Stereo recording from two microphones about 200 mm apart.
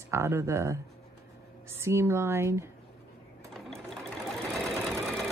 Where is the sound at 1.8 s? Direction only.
15° right (ahead or behind).